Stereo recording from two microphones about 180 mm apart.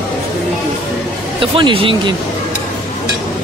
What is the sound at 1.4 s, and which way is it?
Speech, 30° right (ahead or behind).